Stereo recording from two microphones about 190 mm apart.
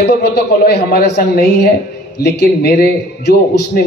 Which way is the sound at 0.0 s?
55° left (ahead or behind).